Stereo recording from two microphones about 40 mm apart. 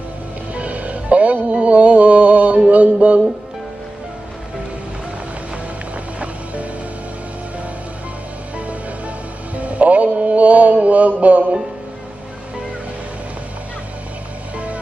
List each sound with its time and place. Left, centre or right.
0.6 s music: right
6.1 s music: right
9.6 s music: right